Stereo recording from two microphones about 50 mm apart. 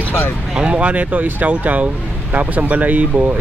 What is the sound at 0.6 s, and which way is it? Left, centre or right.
Speech, right.